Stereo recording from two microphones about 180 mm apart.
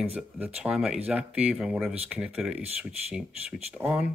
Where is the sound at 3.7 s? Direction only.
10° right (ahead or behind).